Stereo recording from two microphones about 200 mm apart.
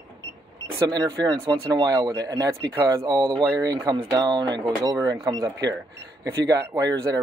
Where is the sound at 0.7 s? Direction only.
20° right (ahead or behind).